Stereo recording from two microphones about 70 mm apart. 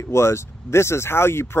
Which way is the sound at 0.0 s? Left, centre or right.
Left.